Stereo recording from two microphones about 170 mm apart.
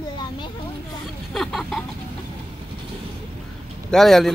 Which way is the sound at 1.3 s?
Centre (ahead or behind).